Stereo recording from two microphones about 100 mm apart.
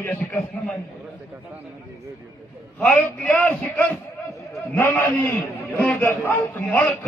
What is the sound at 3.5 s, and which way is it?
A man's voice, 15° left (ahead or behind).